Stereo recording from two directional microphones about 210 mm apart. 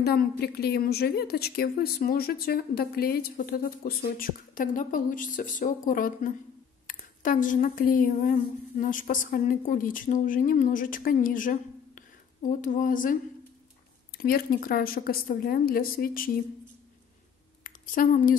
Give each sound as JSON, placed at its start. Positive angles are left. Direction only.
{"t": 0.0, "sound": "a woman's voice", "side_deg": 50}
{"t": 17.6, "sound": "a woman's voice", "side_deg": 40}